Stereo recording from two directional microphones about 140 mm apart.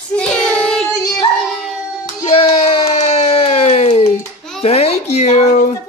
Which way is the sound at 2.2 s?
45° left (ahead or behind).